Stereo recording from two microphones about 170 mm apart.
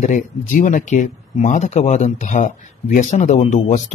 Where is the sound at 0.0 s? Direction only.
45° left (ahead or behind).